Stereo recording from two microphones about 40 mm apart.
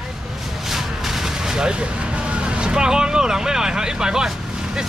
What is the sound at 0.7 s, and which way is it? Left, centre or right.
Vehicle, centre.